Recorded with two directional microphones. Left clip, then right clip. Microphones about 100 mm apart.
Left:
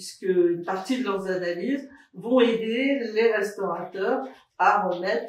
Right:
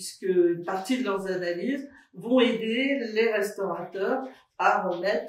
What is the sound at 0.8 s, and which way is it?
Speech, 15° right (ahead or behind).